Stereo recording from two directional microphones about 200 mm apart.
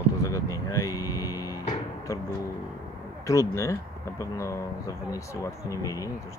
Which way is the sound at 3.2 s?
15° left (ahead or behind).